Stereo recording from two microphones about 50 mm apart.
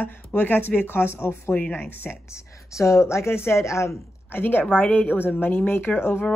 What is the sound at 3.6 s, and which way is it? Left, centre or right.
Speech, left.